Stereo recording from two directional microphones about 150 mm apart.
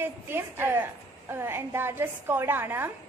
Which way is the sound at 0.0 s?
15° right (ahead or behind).